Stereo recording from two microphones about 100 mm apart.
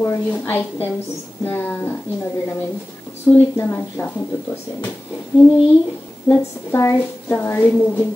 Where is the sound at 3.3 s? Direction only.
25° left (ahead or behind).